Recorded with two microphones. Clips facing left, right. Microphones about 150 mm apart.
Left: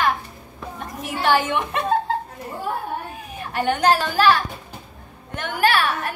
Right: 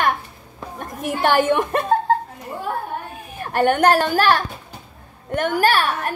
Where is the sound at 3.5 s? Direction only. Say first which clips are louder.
Right 4 dB; 50° right (ahead or behind).